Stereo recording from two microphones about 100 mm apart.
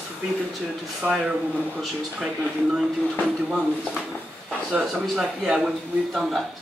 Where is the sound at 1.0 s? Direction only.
10° right (ahead or behind).